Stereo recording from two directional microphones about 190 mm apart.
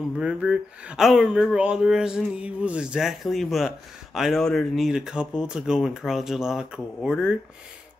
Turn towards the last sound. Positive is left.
turn(degrees=-5)  # may be behind; listen again after turning